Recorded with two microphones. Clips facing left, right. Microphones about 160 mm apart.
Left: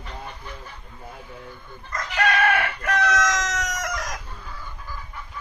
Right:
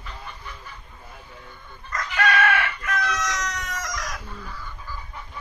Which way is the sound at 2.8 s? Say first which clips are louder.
Left 5 dB; 75° left (ahead or behind).